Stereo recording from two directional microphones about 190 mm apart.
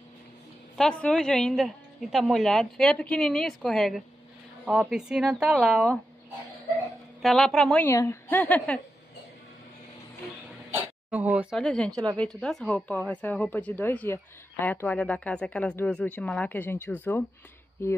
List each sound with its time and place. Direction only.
0.7 s a woman's voice: 5° left (ahead or behind)
7.2 s a woman's voice: centre (ahead or behind)
7.8 s speech: 15° left (ahead or behind)
10.7 s a sound: 10° right (ahead or behind)
11.5 s a woman's voice: 5° left (ahead or behind)
11.9 s a woman's voice: 20° right (ahead or behind)
12.2 s speech: 5° left (ahead or behind)